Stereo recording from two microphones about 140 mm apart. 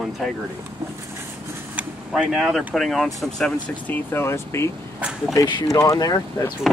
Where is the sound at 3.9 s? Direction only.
15° left (ahead or behind).